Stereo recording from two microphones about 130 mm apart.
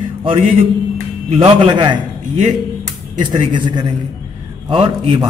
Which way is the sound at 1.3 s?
45° right (ahead or behind).